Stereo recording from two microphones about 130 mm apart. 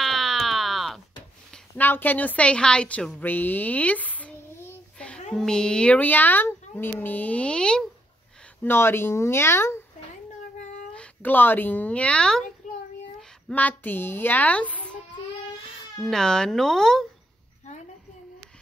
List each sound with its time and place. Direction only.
0.0 s a sound: centre (ahead or behind)
1.8 s a woman's voice: 15° left (ahead or behind)
8.6 s speech: 20° left (ahead or behind)
11.0 s speech: 15° left (ahead or behind)
13.5 s speech: 10° left (ahead or behind)
16.0 s speech: 5° left (ahead or behind)